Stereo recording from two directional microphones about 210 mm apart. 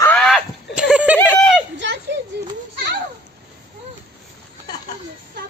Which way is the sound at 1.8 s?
55° right (ahead or behind).